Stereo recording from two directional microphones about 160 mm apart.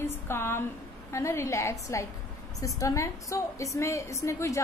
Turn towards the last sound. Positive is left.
turn(degrees=20)  # may be behind; listen again after turning